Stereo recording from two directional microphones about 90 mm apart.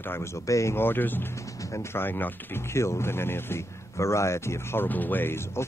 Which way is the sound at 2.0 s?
25° left (ahead or behind).